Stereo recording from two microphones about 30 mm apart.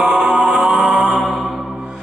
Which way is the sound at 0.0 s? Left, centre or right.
Centre.